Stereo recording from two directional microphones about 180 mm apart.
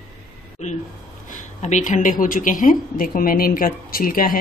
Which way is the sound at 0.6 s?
40° left (ahead or behind).